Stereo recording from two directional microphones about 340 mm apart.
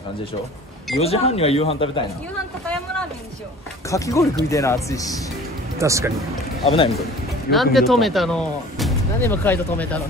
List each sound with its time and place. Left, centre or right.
1.0 s speech: centre
3.9 s speech: centre
5.8 s speech: centre
6.6 s speech: centre
7.5 s speech: centre